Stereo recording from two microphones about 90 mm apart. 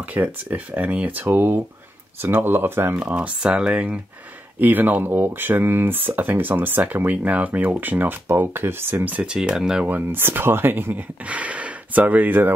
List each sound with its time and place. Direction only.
0.1 s speech: 20° right (ahead or behind)
9.8 s speech: 20° right (ahead or behind)